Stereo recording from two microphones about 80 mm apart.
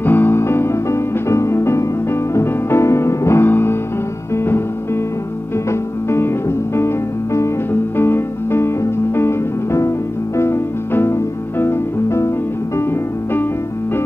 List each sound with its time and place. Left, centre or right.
0.0 s music: left
5.7 s music: left
8.0 s music: left